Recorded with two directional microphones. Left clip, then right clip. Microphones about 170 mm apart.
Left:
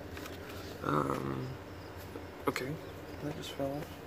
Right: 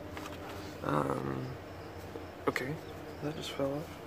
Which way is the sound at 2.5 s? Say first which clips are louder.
Right 2 dB; 5° right (ahead or behind).